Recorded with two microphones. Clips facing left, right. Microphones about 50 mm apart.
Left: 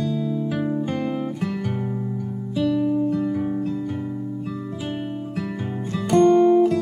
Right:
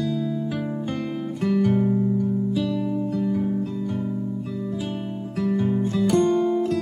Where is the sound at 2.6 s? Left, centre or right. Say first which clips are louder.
Left 5 dB; centre.